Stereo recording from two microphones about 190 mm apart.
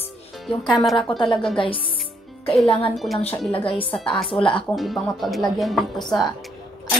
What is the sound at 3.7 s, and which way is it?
Speech, 30° left (ahead or behind).